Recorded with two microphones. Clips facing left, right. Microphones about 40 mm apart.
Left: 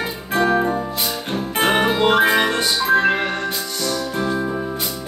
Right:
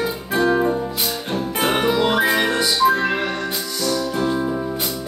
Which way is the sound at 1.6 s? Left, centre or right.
Left.